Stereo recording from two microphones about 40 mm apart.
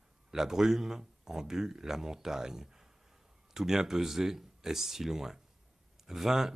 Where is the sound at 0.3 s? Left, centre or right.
Centre.